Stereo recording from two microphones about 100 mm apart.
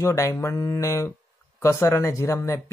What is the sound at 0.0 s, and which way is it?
Speech, 25° left (ahead or behind).